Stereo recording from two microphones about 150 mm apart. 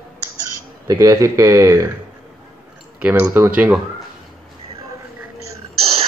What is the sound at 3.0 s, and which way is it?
Speech, 15° right (ahead or behind).